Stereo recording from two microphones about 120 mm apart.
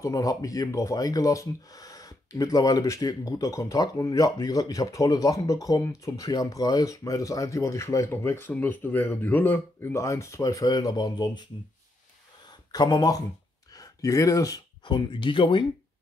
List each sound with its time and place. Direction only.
0.0 s speech: 30° left (ahead or behind)
12.7 s speech: 35° left (ahead or behind)
14.9 s speech: 40° left (ahead or behind)